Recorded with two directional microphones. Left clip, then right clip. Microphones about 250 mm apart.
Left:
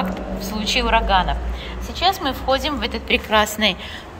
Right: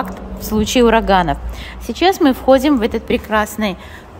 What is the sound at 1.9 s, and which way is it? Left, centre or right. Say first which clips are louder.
Speech: right 5 dB; right.